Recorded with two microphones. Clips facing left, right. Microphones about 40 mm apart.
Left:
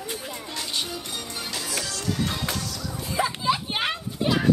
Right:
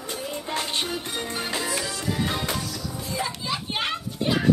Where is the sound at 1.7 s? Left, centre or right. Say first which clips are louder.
Right 1 dB; centre.